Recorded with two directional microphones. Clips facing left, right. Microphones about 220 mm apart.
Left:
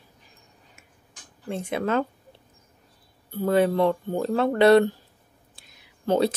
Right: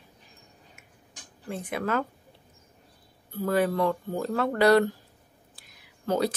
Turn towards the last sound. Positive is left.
turn(degrees=30)  # may be behind; listen again after turning